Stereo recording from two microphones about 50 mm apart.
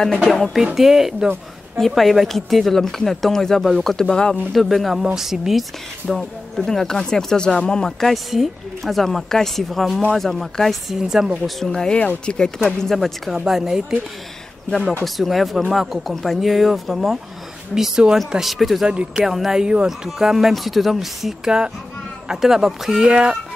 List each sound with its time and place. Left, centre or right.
0.0 s speech: centre
4.5 s speech: centre
6.1 s speech: centre
8.1 s speech: centre
11.6 s speech: centre
13.5 s speech: centre
15.0 s speech: centre
18.9 s speech: centre
19.2 s speech: centre
19.6 s speech: centre
19.9 s speech: centre
21.5 s speech: centre
23.0 s speech: right